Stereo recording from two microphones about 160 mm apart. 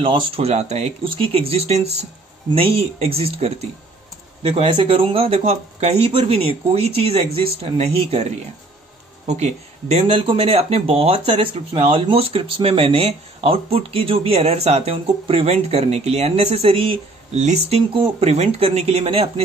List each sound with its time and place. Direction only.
0.0 s speech: 35° right (ahead or behind)
1.0 s speech: 35° right (ahead or behind)
9.3 s speech: 45° right (ahead or behind)